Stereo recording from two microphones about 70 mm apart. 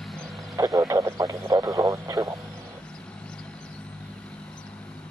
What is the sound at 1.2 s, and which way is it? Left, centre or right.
Speech, right.